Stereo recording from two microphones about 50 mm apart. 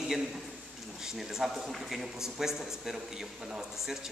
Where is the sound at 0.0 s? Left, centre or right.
Centre.